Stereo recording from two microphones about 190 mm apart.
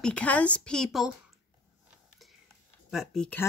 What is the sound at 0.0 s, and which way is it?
A woman's voice, 5° left (ahead or behind).